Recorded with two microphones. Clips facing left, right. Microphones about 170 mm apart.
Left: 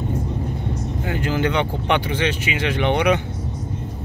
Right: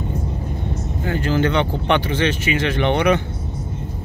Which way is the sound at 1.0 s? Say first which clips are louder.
Right 3 dB; 15° left (ahead or behind).